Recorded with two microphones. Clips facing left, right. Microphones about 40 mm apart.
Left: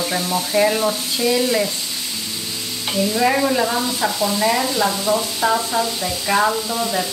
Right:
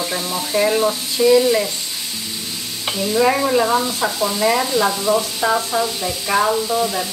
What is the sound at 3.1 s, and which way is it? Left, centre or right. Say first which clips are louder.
Speech: right 3 dB; centre.